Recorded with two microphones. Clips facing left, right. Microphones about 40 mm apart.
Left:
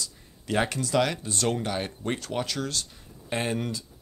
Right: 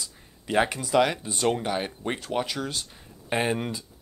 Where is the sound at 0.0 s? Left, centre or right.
Centre.